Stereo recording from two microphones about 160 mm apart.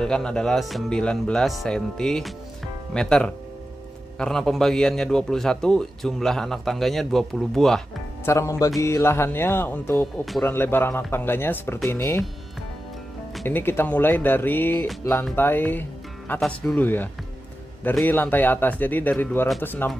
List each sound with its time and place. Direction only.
0.0 s a man's voice: 5° left (ahead or behind)
8.3 s music: 20° left (ahead or behind)
13.5 s music: 15° left (ahead or behind)
15.3 s speech: 10° left (ahead or behind)
16.3 s music: 5° left (ahead or behind)